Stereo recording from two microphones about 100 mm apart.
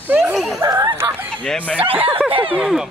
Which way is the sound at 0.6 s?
30° right (ahead or behind).